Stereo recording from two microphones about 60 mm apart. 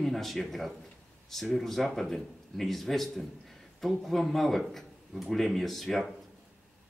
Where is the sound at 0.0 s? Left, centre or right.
Centre.